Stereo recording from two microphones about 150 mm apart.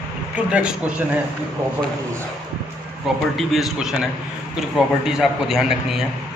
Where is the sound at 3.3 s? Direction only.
Centre (ahead or behind).